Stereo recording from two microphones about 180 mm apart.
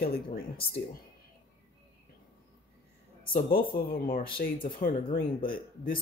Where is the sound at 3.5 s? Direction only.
55° left (ahead or behind).